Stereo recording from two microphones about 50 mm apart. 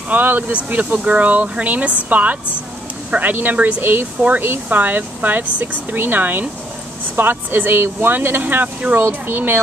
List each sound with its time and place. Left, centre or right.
0.1 s speech: right